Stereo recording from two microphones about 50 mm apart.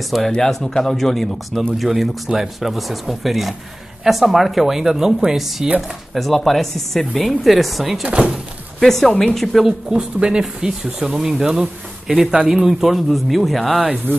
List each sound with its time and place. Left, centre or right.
0.3 s speech: centre
2.0 s speech: centre
8.0 s speech: right
8.7 s speech: centre
9.7 s speech: centre